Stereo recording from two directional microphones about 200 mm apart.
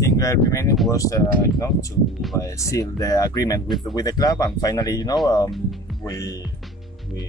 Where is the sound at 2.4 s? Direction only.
15° left (ahead or behind).